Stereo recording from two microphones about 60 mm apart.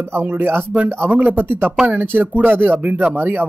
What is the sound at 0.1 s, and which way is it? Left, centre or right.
Speech, right.